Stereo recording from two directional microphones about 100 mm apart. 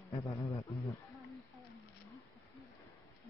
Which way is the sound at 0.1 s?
30° left (ahead or behind).